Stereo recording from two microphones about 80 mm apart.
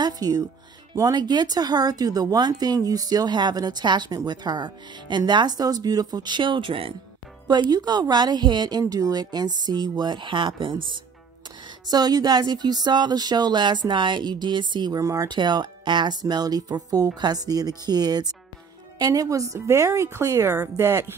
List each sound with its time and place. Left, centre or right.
0.0 s speech: right
7.4 s speech: right
11.9 s speech: right
14.9 s speech: right
15.2 s a woman's voice: right